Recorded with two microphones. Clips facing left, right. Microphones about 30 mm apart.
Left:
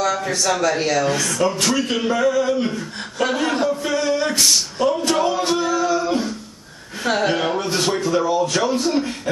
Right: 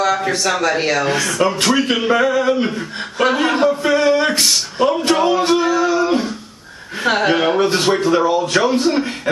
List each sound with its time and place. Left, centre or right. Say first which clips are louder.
0.0 s a man's voice: right 3 dB; right